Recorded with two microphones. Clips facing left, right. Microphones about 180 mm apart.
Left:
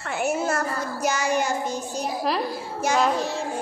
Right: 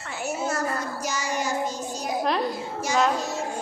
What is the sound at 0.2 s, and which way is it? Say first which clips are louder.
Child singing: left 3 dB; 55° left (ahead or behind).